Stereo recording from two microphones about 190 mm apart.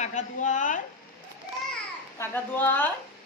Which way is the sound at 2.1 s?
10° left (ahead or behind).